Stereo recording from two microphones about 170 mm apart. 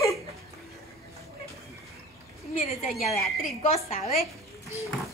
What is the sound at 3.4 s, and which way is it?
Speech, 45° left (ahead or behind).